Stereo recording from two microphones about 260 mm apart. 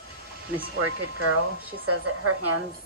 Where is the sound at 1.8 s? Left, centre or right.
Right.